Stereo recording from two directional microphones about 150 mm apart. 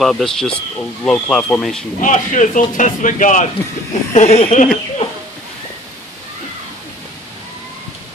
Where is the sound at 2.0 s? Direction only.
60° left (ahead or behind).